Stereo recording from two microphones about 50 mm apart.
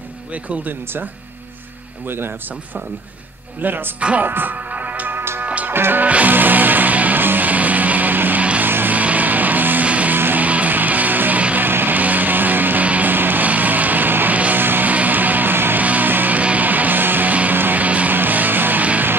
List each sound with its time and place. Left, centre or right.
0.3 s speech: right
2.0 s speech: right
4.2 s music: right
5.7 s speech: right
6.0 s music: right
6.3 s music: right
8.9 s music: right
10.1 s music: right
10.4 s music: right
15.8 s music: right